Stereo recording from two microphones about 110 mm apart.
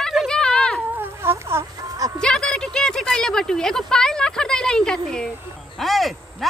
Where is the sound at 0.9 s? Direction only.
25° right (ahead or behind).